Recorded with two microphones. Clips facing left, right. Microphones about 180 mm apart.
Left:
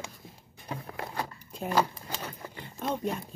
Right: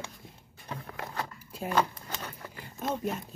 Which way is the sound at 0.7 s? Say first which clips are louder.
Left 2 dB; 15° left (ahead or behind).